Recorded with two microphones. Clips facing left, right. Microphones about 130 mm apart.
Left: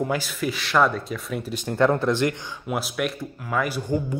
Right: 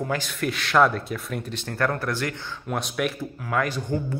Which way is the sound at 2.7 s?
5° left (ahead or behind).